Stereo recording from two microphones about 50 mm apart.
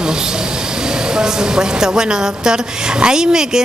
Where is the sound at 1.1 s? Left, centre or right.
Centre.